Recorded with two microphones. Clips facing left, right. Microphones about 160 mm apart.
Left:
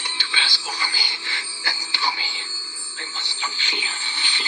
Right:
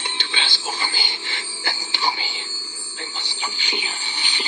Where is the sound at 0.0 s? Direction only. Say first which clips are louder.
Right 2 dB; 20° right (ahead or behind).